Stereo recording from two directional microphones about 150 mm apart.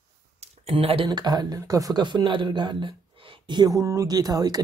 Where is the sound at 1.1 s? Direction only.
30° right (ahead or behind).